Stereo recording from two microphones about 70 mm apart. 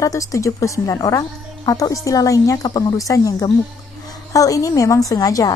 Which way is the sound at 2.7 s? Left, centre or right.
Left.